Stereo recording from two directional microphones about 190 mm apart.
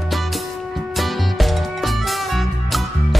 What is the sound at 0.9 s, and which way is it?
Music, centre (ahead or behind).